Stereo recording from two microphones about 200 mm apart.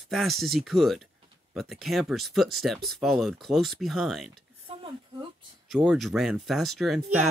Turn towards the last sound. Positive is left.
turn(degrees=-35)  # may be behind; listen again after turning